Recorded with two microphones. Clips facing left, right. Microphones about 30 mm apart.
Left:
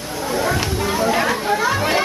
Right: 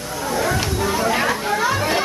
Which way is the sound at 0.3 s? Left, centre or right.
Centre.